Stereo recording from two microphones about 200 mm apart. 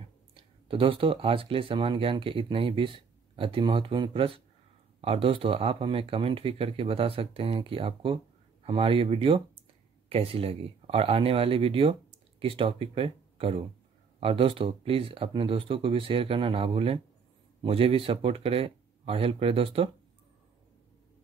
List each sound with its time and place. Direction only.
0.3 s speech: 25° right (ahead or behind)